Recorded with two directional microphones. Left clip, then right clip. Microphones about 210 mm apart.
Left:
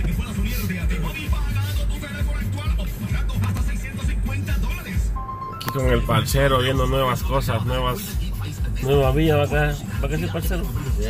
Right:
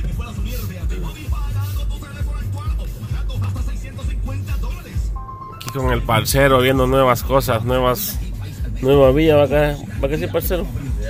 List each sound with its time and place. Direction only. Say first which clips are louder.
5.8 s speech: right 3 dB; 45° right (ahead or behind)